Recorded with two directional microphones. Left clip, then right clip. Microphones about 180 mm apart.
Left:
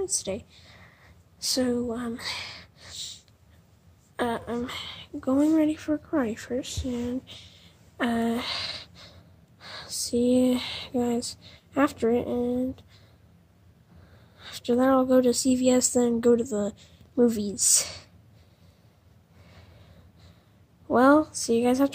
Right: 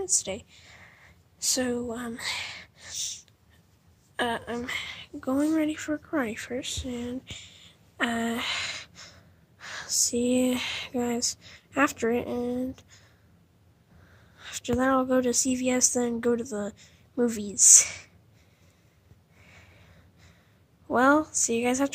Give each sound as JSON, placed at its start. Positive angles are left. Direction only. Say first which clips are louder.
{"t": 0.0, "sound": "a woman's voice", "louder": "even", "side_deg": 0}
{"t": 4.2, "sound": "speech", "louder": "left 1 dB", "side_deg": 0}
{"t": 14.4, "sound": "a woman's voice", "louder": "left 3 dB", "side_deg": 5}
{"t": 19.5, "sound": "a sound", "louder": "right 1 dB", "side_deg": 15}
{"t": 20.9, "sound": "a woman's voice", "louder": "left 2 dB", "side_deg": 10}